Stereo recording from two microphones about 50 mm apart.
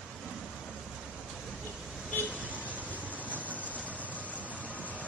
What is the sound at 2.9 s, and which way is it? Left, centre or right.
Vehicle, left.